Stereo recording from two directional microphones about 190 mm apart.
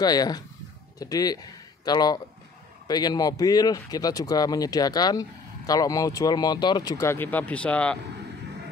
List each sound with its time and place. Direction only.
0.0 s speech: 20° left (ahead or behind)